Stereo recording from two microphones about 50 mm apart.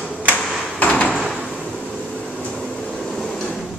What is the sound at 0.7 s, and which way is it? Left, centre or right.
Door, left.